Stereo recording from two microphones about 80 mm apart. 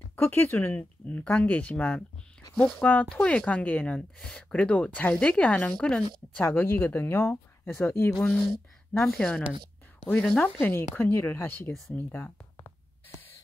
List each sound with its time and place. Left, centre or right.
0.1 s speech: left; by 6.4 s centre
6.4 s speech: left
8.1 s speech: centre
10.6 s speech: left